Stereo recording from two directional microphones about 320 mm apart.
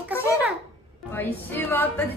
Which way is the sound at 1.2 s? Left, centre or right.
Centre.